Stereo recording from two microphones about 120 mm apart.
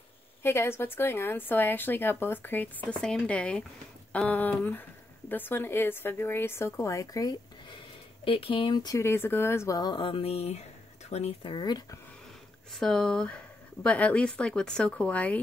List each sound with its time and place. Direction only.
0.4 s speech: 20° left (ahead or behind)
8.3 s speech: 50° left (ahead or behind)
8.9 s speech: 20° left (ahead or behind)
9.8 s speech: 40° left (ahead or behind)
12.7 s speech: 5° left (ahead or behind)